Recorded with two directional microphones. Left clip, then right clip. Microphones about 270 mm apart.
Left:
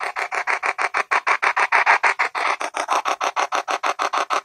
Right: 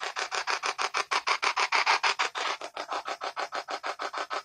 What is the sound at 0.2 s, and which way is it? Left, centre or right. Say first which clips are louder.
Filing: left 8 dB; centre.